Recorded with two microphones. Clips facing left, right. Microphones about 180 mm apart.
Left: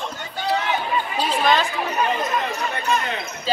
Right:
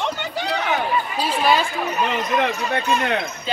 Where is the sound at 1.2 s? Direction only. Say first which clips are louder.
Even; 10° right (ahead or behind).